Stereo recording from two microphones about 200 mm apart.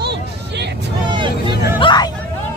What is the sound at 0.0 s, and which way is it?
Vehicle, 55° right (ahead or behind).